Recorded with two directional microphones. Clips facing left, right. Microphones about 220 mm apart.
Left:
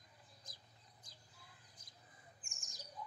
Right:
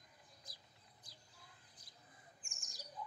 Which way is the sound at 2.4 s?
Centre (ahead or behind).